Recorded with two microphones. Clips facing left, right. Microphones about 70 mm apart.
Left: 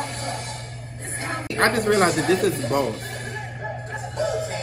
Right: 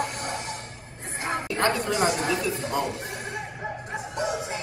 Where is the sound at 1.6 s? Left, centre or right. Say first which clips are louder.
Left 6 dB; left.